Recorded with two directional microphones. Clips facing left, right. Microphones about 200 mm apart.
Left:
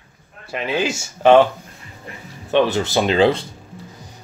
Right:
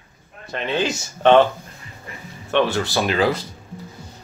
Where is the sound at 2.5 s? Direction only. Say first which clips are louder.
Left 3 dB; 15° left (ahead or behind).